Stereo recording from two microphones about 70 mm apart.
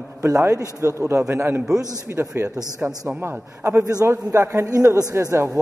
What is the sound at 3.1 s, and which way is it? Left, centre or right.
Speech, right.